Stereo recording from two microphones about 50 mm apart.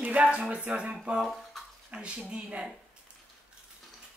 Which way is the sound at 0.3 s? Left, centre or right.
Right.